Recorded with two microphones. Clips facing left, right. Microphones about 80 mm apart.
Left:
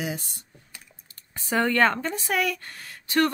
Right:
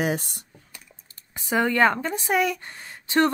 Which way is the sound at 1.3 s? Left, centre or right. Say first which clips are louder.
Right 1 dB; centre.